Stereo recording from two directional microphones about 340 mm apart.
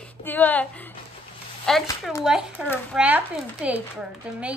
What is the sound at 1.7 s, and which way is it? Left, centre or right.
Speech, centre.